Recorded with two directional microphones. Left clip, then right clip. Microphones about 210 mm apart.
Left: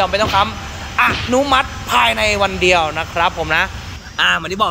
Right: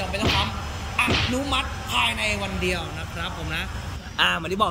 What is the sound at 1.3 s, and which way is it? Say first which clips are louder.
Speech: left 13 dB; 40° left (ahead or behind).